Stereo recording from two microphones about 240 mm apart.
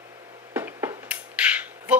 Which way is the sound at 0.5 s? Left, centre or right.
Centre.